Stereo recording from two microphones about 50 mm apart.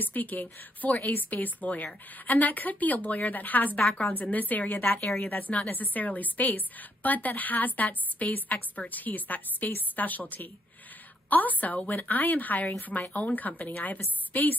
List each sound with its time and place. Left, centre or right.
0.0 s a woman's voice: left